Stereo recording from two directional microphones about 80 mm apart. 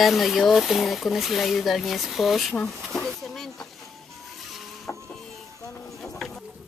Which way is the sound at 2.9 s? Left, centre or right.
Centre.